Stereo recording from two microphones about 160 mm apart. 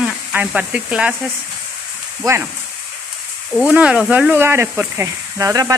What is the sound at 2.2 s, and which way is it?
Speech, 20° right (ahead or behind).